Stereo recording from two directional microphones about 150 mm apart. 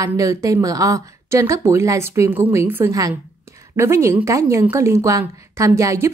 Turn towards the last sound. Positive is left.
turn(degrees=-20)  # may be behind; listen again after turning